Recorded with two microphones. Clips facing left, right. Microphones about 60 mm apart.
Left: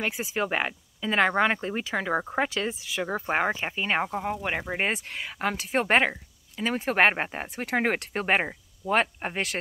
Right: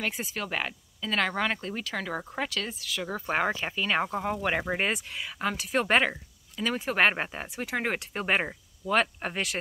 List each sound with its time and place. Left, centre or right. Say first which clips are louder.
0.0 s speech: left 4 dB; centre
3.0 s speech: left 2 dB; left
4.0 s speech: even; centre
4.7 s speech: left 1 dB; left
5.1 s speech: left 2 dB; left